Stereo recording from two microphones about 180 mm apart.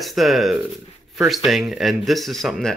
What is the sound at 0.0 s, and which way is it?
Speech, centre (ahead or behind).